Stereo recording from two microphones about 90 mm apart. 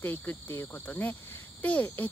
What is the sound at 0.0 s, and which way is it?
Insect, 25° left (ahead or behind).